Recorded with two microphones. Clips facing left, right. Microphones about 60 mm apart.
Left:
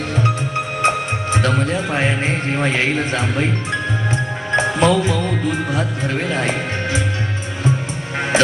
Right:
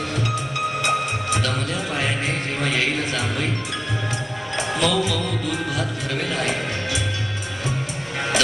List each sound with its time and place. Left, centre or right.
0.8 s speech: left
4.6 s speech: left